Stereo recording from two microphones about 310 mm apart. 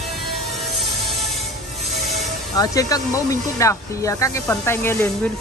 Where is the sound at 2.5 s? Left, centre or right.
Centre.